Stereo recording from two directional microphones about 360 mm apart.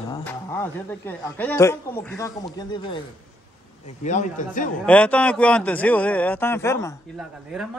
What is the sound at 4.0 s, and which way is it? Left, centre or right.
Speech, centre.